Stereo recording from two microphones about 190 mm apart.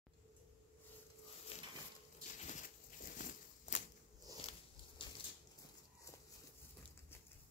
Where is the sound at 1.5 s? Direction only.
30° left (ahead or behind).